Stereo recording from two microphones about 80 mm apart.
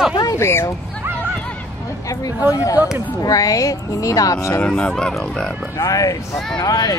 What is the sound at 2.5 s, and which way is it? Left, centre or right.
Speech, left.